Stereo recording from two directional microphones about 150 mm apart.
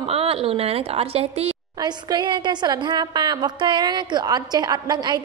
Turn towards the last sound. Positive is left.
turn(degrees=-30)  # may be behind; listen again after turning